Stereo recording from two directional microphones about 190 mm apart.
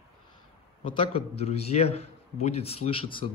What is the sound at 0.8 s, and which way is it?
A man's voice, 30° left (ahead or behind).